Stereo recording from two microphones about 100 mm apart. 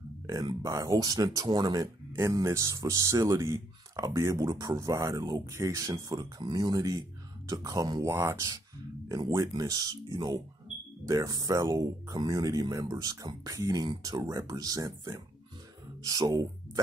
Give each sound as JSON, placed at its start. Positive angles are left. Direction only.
{"t": 0.3, "sound": "speech", "side_deg": -40}
{"t": 2.1, "sound": "speech", "side_deg": -30}
{"t": 8.1, "sound": "speech", "side_deg": -25}